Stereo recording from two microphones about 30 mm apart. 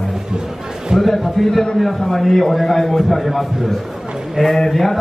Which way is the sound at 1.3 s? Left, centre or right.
Centre.